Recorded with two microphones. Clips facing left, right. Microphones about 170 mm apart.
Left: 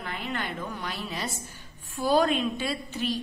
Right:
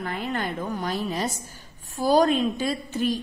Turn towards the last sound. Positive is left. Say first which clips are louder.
# right 5 dB
turn(degrees=-45)  # may be behind; listen again after turning